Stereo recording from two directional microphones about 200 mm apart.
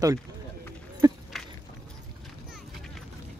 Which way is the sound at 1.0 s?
20° right (ahead or behind).